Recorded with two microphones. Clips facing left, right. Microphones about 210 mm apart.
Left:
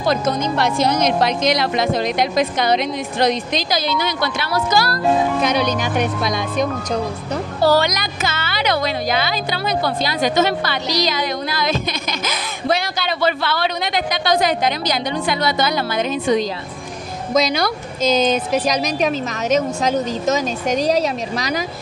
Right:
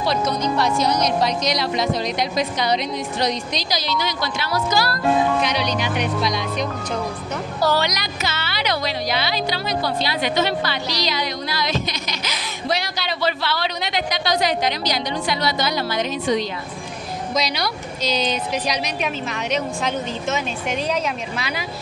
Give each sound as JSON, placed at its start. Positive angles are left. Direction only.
{"t": 0.0, "sound": "speech", "side_deg": 50}
{"t": 7.7, "sound": "speech", "side_deg": 50}